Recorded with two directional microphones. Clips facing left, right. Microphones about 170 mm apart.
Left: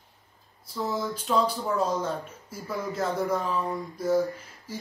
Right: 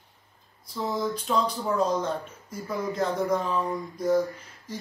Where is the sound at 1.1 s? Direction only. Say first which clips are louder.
Left 1 dB; 5° left (ahead or behind).